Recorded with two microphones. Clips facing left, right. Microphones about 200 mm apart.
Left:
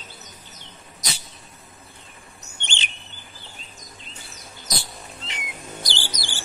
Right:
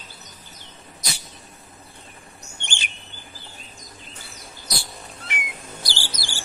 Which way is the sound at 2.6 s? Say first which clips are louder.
Left 1 dB; 20° left (ahead or behind).